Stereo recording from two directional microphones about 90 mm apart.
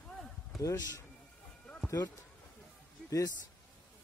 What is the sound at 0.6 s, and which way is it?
Speech, 35° left (ahead or behind).